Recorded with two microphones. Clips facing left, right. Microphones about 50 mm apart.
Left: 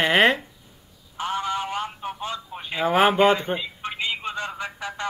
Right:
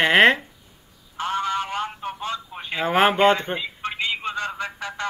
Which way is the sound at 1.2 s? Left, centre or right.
Centre.